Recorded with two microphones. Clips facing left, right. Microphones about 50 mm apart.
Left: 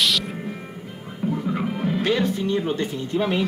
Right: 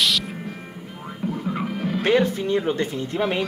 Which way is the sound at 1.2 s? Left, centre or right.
Centre.